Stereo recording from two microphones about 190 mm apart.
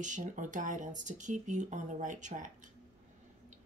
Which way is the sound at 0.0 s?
40° right (ahead or behind).